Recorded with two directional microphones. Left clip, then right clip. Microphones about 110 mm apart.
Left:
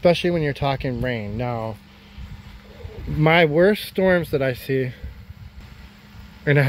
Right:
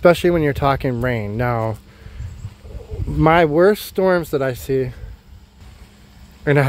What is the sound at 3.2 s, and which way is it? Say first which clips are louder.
Speech: right 3 dB; 25° right (ahead or behind).